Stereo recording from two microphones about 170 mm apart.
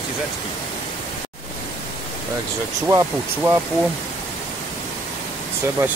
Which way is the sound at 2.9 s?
20° right (ahead or behind).